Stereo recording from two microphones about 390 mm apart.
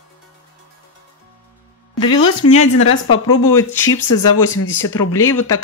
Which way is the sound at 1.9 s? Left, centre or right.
Left.